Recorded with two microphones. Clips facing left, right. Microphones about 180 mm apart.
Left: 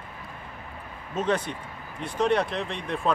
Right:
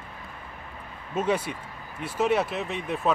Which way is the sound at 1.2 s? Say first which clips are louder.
Even; 10° right (ahead or behind).